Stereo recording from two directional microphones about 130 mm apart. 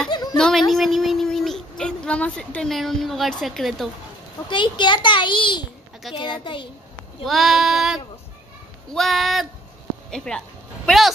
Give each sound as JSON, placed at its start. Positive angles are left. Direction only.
{"t": 0.1, "sound": "a sound", "side_deg": 30}
{"t": 0.4, "sound": "speech", "side_deg": 5}
{"t": 4.5, "sound": "a child's voice", "side_deg": 40}
{"t": 7.2, "sound": "sheep", "side_deg": 0}
{"t": 10.9, "sound": "speech", "side_deg": 0}